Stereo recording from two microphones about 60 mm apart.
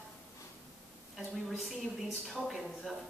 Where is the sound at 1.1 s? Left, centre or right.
Centre.